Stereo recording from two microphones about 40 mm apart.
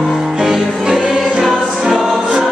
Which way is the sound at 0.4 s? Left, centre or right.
Centre.